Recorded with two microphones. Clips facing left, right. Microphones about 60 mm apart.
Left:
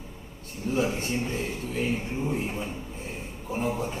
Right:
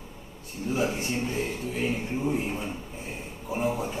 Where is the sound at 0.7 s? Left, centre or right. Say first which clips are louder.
Left 2 dB; centre.